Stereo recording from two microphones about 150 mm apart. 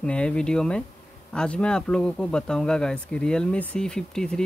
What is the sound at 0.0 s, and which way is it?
Speech, 5° left (ahead or behind).